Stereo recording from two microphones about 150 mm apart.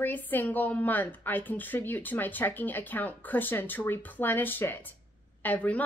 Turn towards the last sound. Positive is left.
turn(degrees=10)  # may be behind; listen again after turning